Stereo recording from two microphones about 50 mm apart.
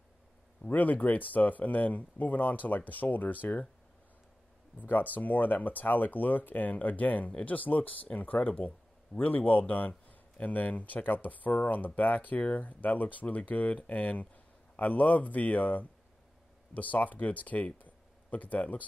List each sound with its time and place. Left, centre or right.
0.7 s a man's voice: left
4.7 s a man's voice: left
17.7 s a sound: left